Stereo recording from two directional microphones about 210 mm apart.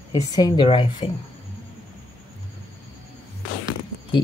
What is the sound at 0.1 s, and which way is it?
Speech, 20° left (ahead or behind).